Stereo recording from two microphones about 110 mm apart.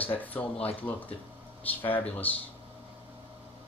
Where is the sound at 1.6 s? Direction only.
15° left (ahead or behind).